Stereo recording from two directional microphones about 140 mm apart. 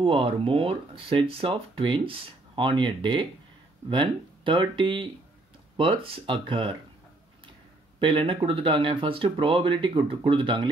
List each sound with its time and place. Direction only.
0.0 s speech: 40° right (ahead or behind)
8.0 s speech: 35° right (ahead or behind)